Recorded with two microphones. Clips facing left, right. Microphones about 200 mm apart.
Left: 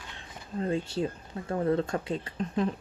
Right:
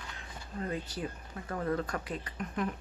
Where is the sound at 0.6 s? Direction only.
25° left (ahead or behind).